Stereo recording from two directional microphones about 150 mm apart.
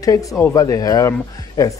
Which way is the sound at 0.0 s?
25° left (ahead or behind).